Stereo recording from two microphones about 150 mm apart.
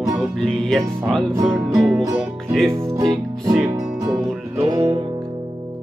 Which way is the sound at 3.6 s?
20° right (ahead or behind).